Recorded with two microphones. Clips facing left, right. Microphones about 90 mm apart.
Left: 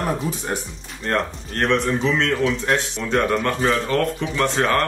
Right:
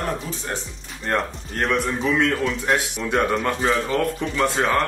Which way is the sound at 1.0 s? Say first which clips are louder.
Left 1 dB; 5° right (ahead or behind).